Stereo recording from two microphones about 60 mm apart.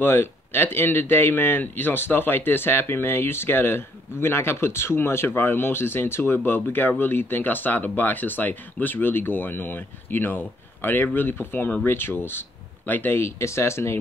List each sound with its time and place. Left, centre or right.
0.0 s speech: left